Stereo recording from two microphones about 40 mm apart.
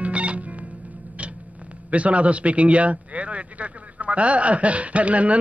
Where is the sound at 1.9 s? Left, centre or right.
Right.